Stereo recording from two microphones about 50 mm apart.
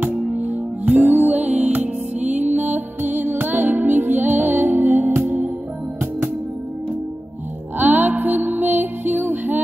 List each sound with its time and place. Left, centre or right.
0.8 s music: right
7.8 s music: right